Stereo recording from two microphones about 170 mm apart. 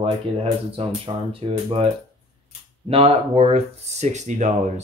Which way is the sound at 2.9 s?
35° right (ahead or behind).